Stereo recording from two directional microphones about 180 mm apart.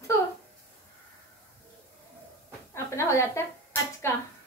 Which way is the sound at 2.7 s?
15° left (ahead or behind).